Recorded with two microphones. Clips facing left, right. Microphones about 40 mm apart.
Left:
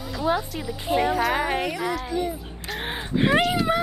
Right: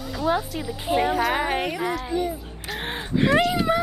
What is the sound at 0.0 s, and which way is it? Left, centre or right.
Speech, centre.